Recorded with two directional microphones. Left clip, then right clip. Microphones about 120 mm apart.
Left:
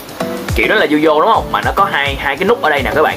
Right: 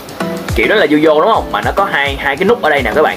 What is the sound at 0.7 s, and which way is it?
Speech, 20° right (ahead or behind).